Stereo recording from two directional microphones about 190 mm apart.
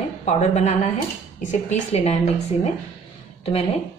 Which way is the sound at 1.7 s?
35° left (ahead or behind).